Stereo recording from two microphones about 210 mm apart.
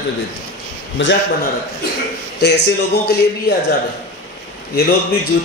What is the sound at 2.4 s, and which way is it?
Speech, 55° left (ahead or behind).